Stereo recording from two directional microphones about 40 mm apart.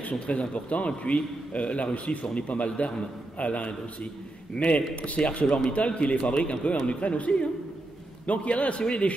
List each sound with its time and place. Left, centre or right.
0.1 s a man's voice: left